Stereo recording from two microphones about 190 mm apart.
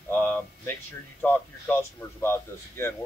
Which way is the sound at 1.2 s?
10° left (ahead or behind).